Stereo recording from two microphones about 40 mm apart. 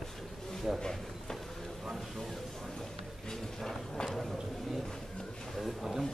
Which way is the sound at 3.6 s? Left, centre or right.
Centre.